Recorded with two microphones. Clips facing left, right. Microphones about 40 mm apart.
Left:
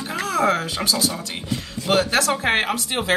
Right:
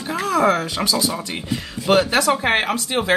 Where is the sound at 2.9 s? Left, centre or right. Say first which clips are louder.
Right 6 dB; centre.